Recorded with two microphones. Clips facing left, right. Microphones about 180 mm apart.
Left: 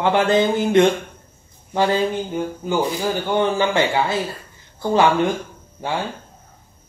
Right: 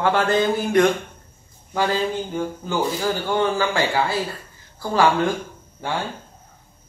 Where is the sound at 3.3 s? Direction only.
20° left (ahead or behind).